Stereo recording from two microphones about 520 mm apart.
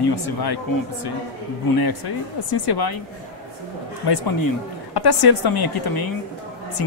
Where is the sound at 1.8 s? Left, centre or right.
Left.